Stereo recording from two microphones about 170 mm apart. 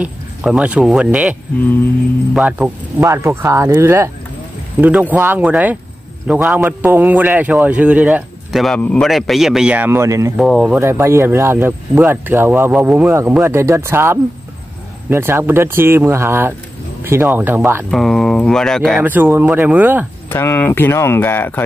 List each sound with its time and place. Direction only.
0.0 s a man's voice: 5° right (ahead or behind)
2.3 s a man's voice: 10° right (ahead or behind)
10.3 s speech: centre (ahead or behind)
10.8 s a man's voice: 15° right (ahead or behind)
17.9 s speech: centre (ahead or behind)
19.0 s a man's voice: 10° right (ahead or behind)
20.2 s speech: 15° left (ahead or behind)